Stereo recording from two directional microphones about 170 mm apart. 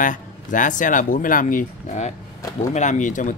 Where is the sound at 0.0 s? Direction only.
50° left (ahead or behind).